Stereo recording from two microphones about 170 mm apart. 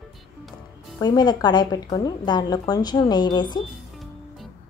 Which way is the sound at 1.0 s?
25° left (ahead or behind).